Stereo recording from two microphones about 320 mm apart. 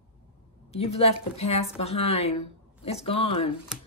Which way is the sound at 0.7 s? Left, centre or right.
Centre.